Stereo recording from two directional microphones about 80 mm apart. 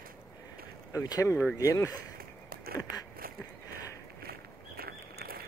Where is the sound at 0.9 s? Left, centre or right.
Left.